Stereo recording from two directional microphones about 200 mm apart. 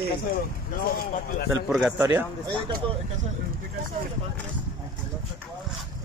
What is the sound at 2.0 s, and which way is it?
Speech, 15° right (ahead or behind).